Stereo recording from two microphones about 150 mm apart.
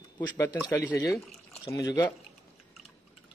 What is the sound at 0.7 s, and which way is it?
Speech, 15° left (ahead or behind).